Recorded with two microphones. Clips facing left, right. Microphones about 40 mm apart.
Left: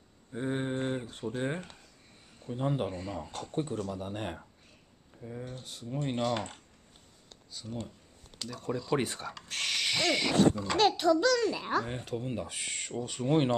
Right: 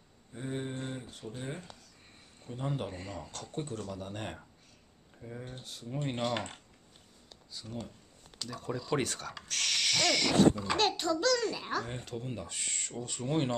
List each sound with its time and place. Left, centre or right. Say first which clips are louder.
0.3 s mantra: left 5 dB; left
1.1 s speech: left 7 dB; left
2.4 s speech: left 5 dB; centre
5.2 s speech: left 2 dB; centre
5.6 s speech: left 1 dB; centre
7.5 s speech: left 2 dB; centre
9.0 s speech: left 1 dB; centre
9.5 s owl: even; left
10.5 s speech: left 1 dB; centre
11.0 s speech: left 4 dB; centre